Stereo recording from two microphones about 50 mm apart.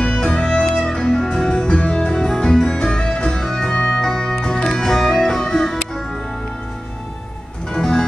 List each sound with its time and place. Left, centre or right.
0.2 s music: centre
7.7 s music: centre